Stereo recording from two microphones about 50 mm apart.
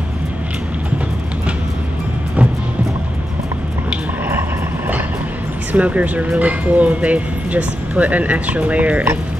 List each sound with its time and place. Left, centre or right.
5.7 s speech: right